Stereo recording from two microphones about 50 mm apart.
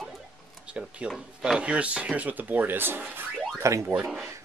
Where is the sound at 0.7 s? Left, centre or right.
Right.